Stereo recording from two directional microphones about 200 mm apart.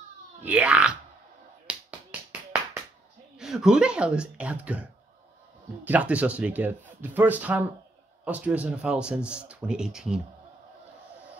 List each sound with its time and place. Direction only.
0.5 s speech: 5° right (ahead or behind)
1.7 s finger snapping: 5° right (ahead or behind)
3.3 s speech: centre (ahead or behind)
5.9 s speech: 5° right (ahead or behind)